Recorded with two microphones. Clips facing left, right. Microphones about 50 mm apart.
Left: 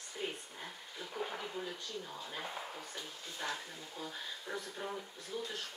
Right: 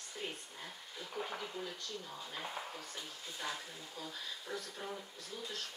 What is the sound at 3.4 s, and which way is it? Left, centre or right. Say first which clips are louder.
Speech: left 2 dB; centre.